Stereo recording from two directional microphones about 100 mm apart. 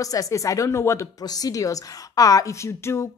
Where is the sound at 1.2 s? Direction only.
40° left (ahead or behind).